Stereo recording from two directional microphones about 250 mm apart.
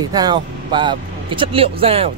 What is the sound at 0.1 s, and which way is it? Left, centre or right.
A man's voice, centre.